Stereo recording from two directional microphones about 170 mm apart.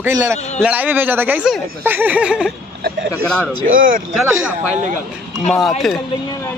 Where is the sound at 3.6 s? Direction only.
55° right (ahead or behind).